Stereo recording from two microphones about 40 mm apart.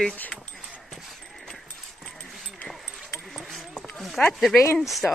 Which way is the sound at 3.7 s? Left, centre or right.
Left.